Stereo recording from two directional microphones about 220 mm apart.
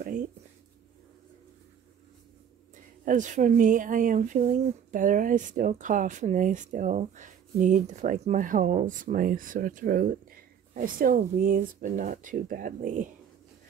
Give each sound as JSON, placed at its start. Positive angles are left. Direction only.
{"t": 3.1, "sound": "speech", "side_deg": -35}